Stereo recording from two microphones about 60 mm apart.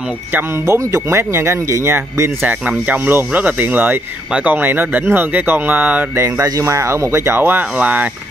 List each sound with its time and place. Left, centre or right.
0.7 s speech: right
2.9 s speech: right
6.1 s speech: right
7.4 s speech: right